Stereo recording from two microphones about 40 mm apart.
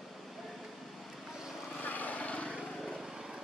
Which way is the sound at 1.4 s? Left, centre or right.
Centre.